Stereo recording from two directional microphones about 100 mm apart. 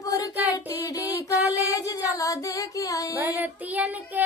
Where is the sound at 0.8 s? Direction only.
35° left (ahead or behind).